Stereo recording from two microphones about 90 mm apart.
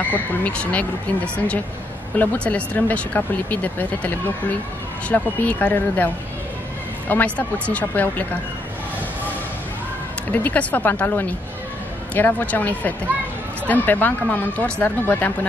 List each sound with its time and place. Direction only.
0.0 s speech: 20° left (ahead or behind)
10.3 s speech: 20° left (ahead or behind)